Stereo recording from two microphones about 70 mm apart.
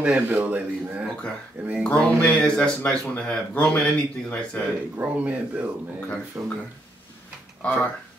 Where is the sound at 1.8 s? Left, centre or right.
Centre.